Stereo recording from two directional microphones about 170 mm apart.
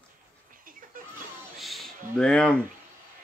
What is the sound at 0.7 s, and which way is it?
Music, 55° right (ahead or behind).